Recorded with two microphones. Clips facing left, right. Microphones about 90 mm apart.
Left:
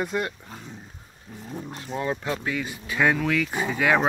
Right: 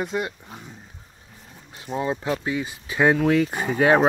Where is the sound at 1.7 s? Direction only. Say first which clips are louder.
Right 3 dB; 15° right (ahead or behind).